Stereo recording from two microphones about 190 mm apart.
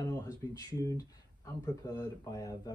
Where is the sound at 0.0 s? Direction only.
15° left (ahead or behind).